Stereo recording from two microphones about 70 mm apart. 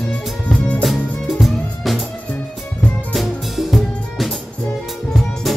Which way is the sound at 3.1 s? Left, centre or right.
Centre.